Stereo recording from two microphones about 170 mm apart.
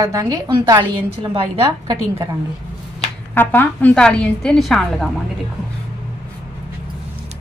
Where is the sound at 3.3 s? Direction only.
10° left (ahead or behind).